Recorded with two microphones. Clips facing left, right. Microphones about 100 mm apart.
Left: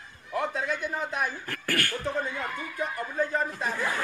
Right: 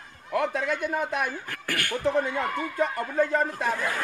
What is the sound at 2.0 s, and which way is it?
A man's voice, 70° right (ahead or behind).